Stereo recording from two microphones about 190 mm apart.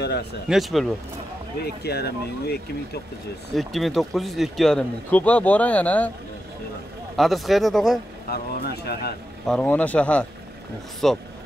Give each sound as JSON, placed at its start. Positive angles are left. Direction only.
{"t": 0.5, "sound": "speech", "side_deg": 0}
{"t": 1.8, "sound": "speech", "side_deg": 60}
{"t": 3.5, "sound": "speech", "side_deg": 0}
{"t": 7.2, "sound": "speech", "side_deg": 0}
{"t": 8.3, "sound": "speech", "side_deg": 55}
{"t": 9.5, "sound": "speech", "side_deg": 5}